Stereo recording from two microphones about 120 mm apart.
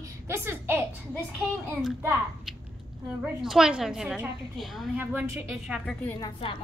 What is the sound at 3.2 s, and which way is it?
A woman's voice, 5° right (ahead or behind).